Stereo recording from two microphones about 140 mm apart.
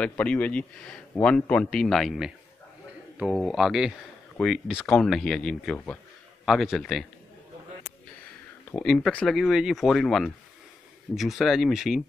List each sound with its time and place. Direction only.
0.0 s a man's voice: 10° left (ahead or behind)
8.7 s a man's voice: 5° left (ahead or behind)